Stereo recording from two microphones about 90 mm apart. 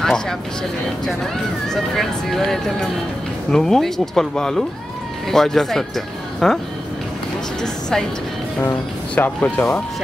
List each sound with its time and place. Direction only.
0.0 s speech: 5° left (ahead or behind)
8.5 s speech: 20° left (ahead or behind)